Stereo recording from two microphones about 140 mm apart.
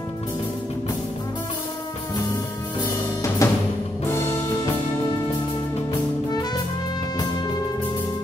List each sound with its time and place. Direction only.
3.4 s music: 20° left (ahead or behind)